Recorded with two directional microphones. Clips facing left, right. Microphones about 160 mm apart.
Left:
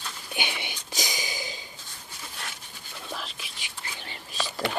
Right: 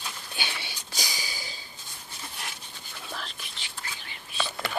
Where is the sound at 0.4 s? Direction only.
15° left (ahead or behind).